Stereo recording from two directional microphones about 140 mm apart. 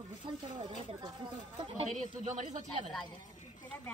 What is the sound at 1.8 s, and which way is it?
Speech, 60° right (ahead or behind).